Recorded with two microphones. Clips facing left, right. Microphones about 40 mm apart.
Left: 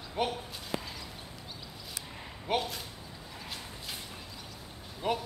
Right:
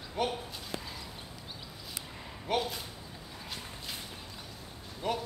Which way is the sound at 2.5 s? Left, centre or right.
Centre.